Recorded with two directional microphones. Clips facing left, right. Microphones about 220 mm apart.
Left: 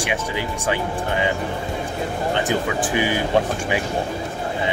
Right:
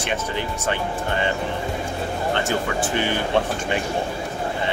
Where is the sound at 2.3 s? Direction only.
15° left (ahead or behind).